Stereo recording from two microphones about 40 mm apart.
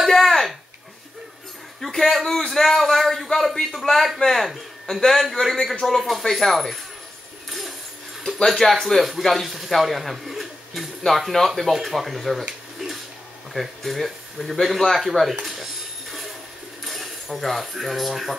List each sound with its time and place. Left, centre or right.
0.1 s a sound: centre
1.9 s a man's voice: centre
4.9 s a man's voice: left
5.3 s speech: centre
8.5 s speech: centre
13.5 s speech: centre
15.4 s a sound: centre
16.8 s speech: centre